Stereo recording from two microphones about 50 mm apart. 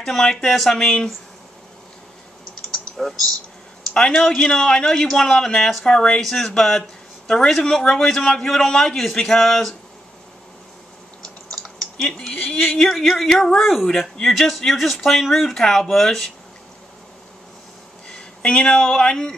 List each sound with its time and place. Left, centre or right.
0.0 s speech: centre
3.9 s speech: centre
5.9 s a man's voice: centre
11.5 s typing: centre
12.5 s a man's voice: centre
18.0 s speech: centre